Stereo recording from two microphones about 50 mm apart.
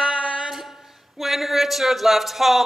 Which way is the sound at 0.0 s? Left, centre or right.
Centre.